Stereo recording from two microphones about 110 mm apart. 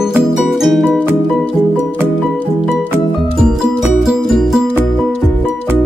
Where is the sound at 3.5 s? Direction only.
Centre (ahead or behind).